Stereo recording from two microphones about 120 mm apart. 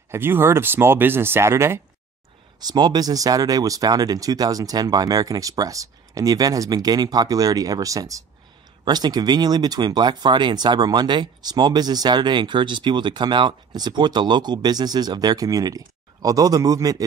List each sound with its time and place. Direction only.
0.1 s speech: 20° right (ahead or behind)
2.6 s speech: 35° right (ahead or behind)